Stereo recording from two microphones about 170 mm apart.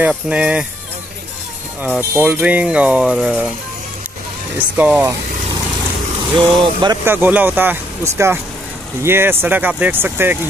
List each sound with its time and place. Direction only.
0.1 s speech: 5° right (ahead or behind)
2.0 s speech: 10° right (ahead or behind)
4.7 s speech: 10° right (ahead or behind)
6.3 s speech: 25° right (ahead or behind)
7.1 s speech: 10° right (ahead or behind)